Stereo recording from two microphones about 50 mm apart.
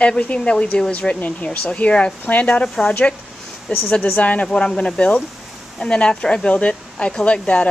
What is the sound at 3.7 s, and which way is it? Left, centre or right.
Speech, left.